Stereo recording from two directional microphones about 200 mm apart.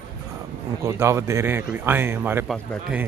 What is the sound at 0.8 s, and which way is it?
Speech, 15° right (ahead or behind).